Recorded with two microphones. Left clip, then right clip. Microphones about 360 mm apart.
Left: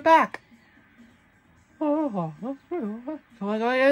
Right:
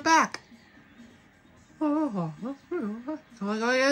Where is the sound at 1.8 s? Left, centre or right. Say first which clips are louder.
Left 3 dB; centre.